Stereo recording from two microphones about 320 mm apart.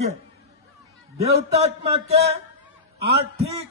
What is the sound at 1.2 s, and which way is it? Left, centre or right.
Speech, centre.